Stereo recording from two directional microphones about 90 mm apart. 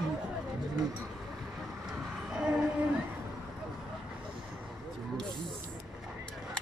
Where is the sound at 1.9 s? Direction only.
10° right (ahead or behind).